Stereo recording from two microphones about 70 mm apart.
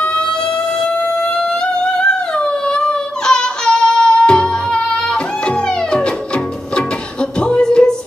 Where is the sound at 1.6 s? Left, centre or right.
Centre.